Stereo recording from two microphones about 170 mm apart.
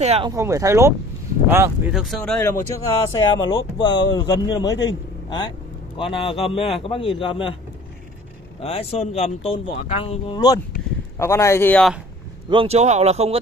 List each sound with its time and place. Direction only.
0.0 s speech: 35° right (ahead or behind)
0.3 s speech: 15° right (ahead or behind); by 2.4 s 5° left (ahead or behind)
2.4 s speech: 20° left (ahead or behind)
5.9 s speech: 30° left (ahead or behind)
8.5 s a man's voice: 35° left (ahead or behind); by 11.8 s 15° left (ahead or behind)
12.4 s speech: 35° right (ahead or behind)